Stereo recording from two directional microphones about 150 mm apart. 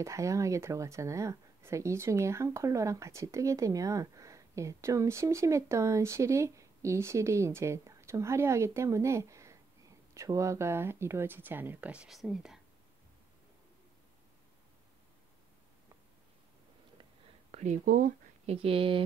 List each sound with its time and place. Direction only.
0.0 s speech: 20° right (ahead or behind); by 12.5 s centre (ahead or behind)
17.5 s speech: 50° right (ahead or behind)
18.4 s speech: 40° right (ahead or behind)